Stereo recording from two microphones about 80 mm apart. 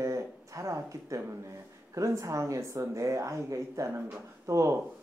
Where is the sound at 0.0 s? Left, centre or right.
Right.